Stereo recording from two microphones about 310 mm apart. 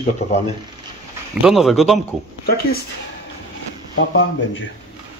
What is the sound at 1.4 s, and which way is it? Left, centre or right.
Speech, centre.